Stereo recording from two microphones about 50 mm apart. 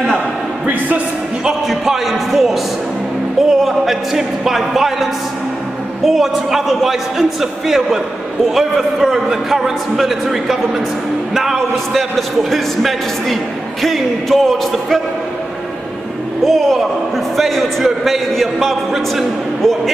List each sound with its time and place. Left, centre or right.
0.7 s a man's voice: right
1.7 s a man's voice: centre
16.4 s a man's voice: centre